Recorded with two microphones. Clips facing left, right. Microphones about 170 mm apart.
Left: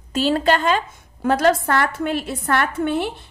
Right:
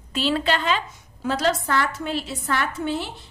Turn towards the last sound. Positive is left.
turn(degrees=55)  # may be behind; listen again after turning